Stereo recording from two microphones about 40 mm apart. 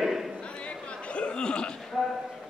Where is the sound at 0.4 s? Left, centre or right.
Left.